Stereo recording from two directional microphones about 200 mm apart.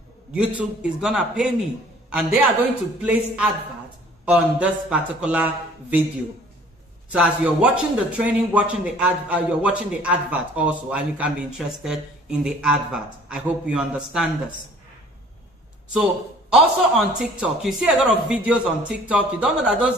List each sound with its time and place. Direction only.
0.3 s a man's voice: 5° right (ahead or behind)
3.0 s a man's voice: 5° right (ahead or behind)
7.1 s a man's voice: 5° right (ahead or behind)
15.9 s a man's voice: 5° right (ahead or behind)